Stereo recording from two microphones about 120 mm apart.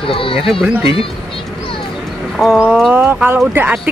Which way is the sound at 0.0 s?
50° left (ahead or behind).